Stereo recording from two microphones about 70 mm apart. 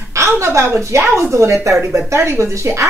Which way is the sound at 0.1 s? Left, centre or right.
Right.